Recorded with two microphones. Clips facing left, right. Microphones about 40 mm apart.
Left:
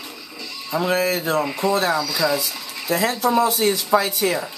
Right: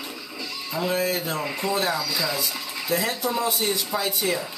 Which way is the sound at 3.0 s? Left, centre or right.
Left.